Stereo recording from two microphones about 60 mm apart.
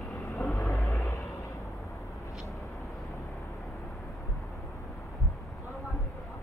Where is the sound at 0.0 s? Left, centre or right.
Centre.